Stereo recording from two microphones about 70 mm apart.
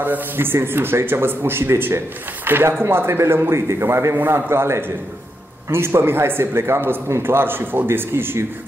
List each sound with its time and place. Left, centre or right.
0.0 s a man's voice: right